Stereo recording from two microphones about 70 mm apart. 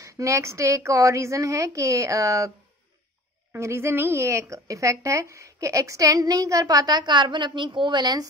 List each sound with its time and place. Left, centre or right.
0.0 s speech: right
3.5 s speech: right